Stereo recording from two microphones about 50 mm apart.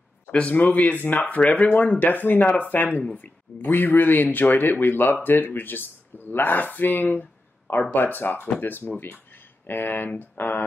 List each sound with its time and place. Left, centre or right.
0.3 s speech: left
0.6 s speech: left